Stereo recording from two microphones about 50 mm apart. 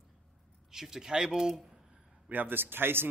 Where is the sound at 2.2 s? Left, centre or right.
Right.